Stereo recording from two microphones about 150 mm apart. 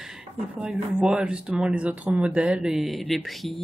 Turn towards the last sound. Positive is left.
turn(degrees=0)  # may be behind; listen again after turning